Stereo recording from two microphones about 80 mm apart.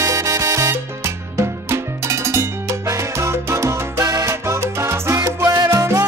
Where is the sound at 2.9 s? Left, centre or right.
Right.